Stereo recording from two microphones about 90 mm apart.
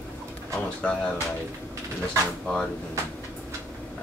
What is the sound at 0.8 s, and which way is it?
Speech, 10° left (ahead or behind).